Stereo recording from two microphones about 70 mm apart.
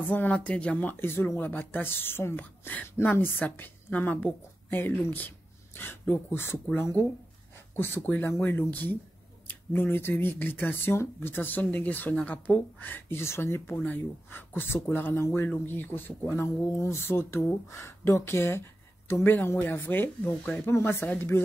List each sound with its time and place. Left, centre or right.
0.1 s speech: left
20.7 s speech: left